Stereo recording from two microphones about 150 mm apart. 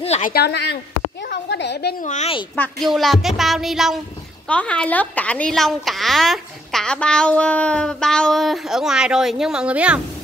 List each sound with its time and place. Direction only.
0.0 s speech: 45° left (ahead or behind)
0.3 s speech: 90° left
1.3 s a woman's voice: 80° left
2.0 s a woman's voice: 50° left (ahead or behind)
2.8 s a child's voice: centre (ahead or behind)